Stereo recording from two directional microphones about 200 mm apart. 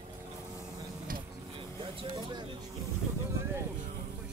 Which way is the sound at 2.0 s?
25° right (ahead or behind).